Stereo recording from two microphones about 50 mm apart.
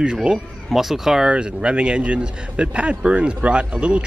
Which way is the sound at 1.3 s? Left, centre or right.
Right.